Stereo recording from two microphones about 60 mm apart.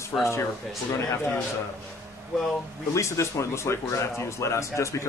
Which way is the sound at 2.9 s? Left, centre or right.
Left.